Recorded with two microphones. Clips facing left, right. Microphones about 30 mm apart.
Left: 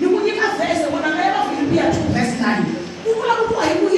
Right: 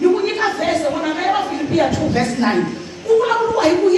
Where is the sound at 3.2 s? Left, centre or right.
Centre.